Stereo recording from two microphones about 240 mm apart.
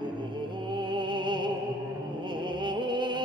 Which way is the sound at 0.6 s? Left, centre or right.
Centre.